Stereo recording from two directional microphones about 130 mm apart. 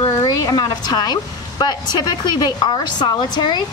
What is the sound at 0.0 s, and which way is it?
A woman's voice, 30° left (ahead or behind).